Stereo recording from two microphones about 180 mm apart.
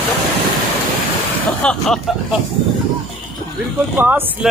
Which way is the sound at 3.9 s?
10° right (ahead or behind).